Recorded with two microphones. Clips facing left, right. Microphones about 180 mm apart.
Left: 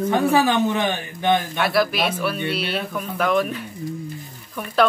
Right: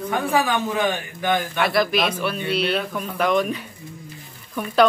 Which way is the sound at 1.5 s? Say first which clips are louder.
Even; 5° left (ahead or behind).